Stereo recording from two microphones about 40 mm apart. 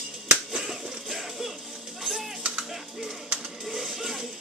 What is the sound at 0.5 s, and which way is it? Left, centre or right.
Finger snapping, centre.